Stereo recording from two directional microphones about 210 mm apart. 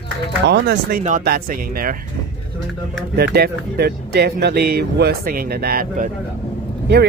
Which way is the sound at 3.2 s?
50° right (ahead or behind).